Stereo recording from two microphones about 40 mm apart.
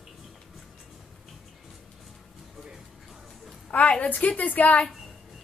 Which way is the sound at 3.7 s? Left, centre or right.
Left.